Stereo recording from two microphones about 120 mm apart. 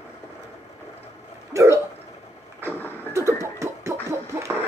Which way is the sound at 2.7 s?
15° left (ahead or behind).